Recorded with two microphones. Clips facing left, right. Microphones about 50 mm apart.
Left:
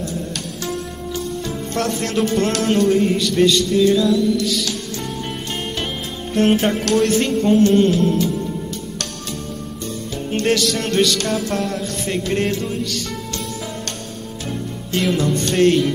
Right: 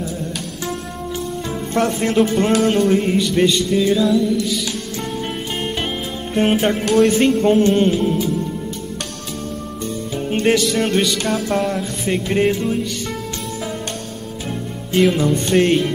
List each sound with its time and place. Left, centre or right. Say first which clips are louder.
0.7 s music: even; centre
6.3 s music: even; centre
10.1 s music: right 2 dB; centre
14.5 s music: right 3 dB; centre